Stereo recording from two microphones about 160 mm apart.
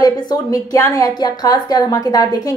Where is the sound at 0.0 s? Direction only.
20° left (ahead or behind).